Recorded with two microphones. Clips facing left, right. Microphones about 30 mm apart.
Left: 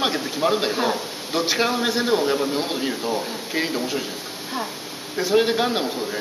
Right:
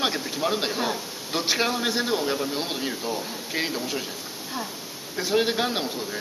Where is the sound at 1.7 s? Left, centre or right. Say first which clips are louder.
Left 4 dB; centre.